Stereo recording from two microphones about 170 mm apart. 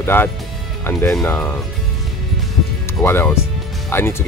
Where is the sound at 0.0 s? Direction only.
15° left (ahead or behind).